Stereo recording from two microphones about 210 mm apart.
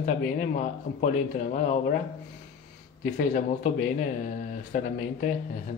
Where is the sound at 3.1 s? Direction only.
40° left (ahead or behind).